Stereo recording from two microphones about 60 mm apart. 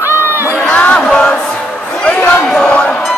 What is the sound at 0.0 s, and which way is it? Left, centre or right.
Crowd, right.